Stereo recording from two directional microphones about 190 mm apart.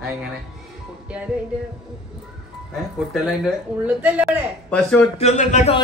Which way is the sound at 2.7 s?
Centre (ahead or behind).